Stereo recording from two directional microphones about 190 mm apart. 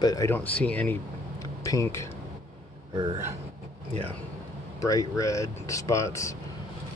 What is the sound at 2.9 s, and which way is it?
Speech, 25° right (ahead or behind).